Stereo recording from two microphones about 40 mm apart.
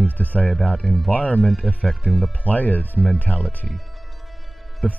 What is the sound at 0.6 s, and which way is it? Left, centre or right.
Speech, left.